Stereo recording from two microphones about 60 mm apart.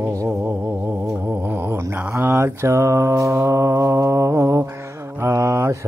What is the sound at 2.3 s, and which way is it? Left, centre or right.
Mantra, right.